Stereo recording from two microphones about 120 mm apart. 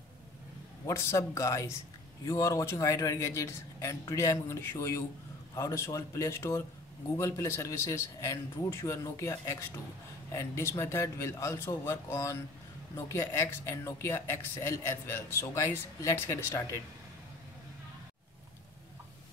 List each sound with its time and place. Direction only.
0.8 s speech: 25° left (ahead or behind)